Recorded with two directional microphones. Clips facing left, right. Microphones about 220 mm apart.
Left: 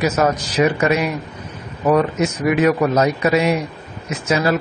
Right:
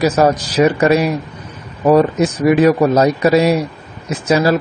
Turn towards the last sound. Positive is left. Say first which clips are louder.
# right 4 dB
turn(degrees=-35)  # may be behind; listen again after turning